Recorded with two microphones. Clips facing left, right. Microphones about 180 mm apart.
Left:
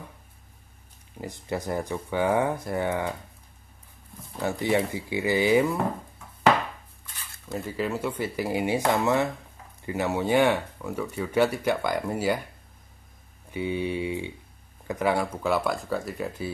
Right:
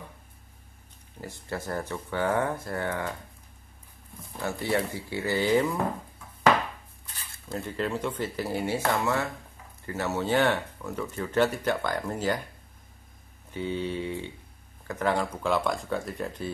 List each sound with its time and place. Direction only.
1.2 s speech: 15° left (ahead or behind)
4.4 s speech: 15° left (ahead or behind)
7.4 s speech: 5° left (ahead or behind)
13.5 s speech: 10° left (ahead or behind)